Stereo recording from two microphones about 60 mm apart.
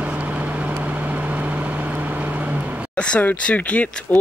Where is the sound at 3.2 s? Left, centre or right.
Left.